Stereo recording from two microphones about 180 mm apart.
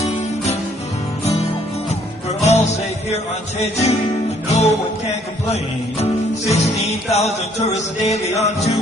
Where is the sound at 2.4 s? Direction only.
35° left (ahead or behind).